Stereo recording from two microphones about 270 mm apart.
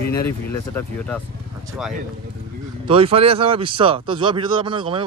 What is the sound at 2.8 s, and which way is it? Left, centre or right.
A man's voice, right.